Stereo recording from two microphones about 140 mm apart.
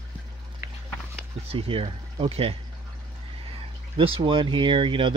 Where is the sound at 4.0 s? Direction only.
40° right (ahead or behind).